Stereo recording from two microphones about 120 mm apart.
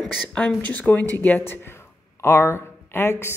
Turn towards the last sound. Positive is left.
turn(degrees=20)  # may be behind; listen again after turning